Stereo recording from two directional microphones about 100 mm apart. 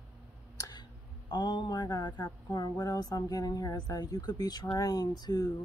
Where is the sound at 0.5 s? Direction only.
40° left (ahead or behind).